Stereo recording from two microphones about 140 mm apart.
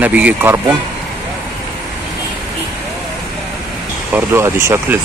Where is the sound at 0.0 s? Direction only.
10° right (ahead or behind).